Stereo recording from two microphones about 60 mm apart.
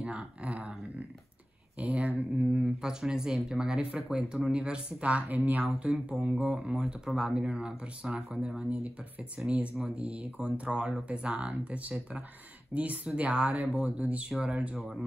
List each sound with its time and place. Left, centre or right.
0.0 s speech: right
2.6 s speech: centre
5.0 s speech: right
5.8 s speech: centre